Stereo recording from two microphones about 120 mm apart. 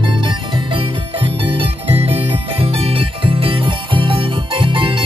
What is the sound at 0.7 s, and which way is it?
Music, 45° right (ahead or behind).